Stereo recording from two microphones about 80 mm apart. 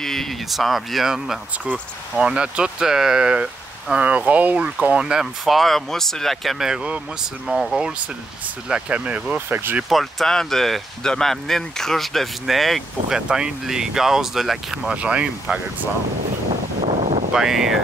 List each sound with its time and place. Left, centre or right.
0.0 s speech: centre
6.7 s speech: centre
7.4 s speech: centre
9.8 s speech: centre
17.3 s speech: centre